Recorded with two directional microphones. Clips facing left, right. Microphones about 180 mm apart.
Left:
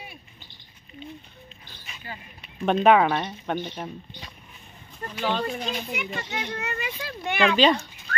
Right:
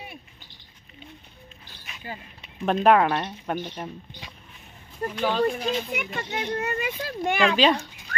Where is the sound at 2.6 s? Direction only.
Centre (ahead or behind).